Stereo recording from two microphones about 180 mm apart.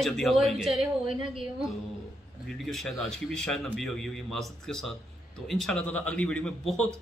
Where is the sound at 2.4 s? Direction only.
Centre (ahead or behind).